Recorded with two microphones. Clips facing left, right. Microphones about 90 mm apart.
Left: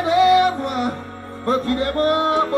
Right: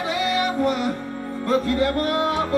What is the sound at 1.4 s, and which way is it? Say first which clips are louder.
Music: left 1 dB; 35° left (ahead or behind).